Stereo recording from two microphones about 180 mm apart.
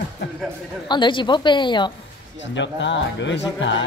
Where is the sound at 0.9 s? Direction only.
25° left (ahead or behind).